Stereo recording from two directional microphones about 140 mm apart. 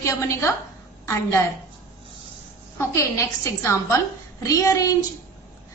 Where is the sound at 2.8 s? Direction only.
20° left (ahead or behind).